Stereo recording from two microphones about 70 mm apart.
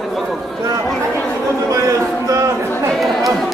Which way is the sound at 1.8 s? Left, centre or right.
Right.